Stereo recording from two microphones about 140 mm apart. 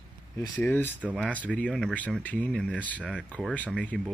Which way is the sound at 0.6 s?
15° left (ahead or behind).